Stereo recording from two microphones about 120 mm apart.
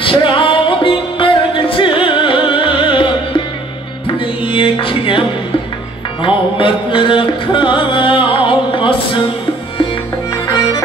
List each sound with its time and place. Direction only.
0.0 s music: 45° left (ahead or behind)
6.2 s music: 45° left (ahead or behind)